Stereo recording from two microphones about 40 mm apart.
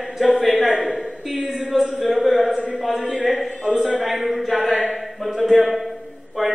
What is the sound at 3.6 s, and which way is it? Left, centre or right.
A man's voice, centre.